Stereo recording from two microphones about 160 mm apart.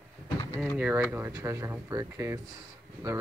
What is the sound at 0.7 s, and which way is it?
Speech, 10° right (ahead or behind).